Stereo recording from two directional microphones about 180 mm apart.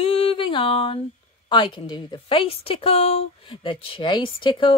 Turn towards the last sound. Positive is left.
turn(degrees=30)  # may be behind; listen again after turning